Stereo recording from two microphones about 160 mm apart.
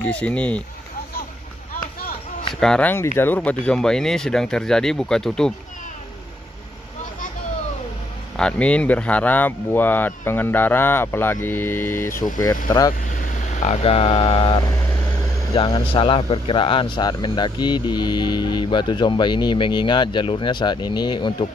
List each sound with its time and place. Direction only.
0.0 s speech: 10° left (ahead or behind)
2.6 s speech: 5° left (ahead or behind)
8.4 s speech: 5° left (ahead or behind); by 12.9 s 25° left (ahead or behind)
13.1 s speech: 50° left (ahead or behind); by 21.5 s 30° left (ahead or behind)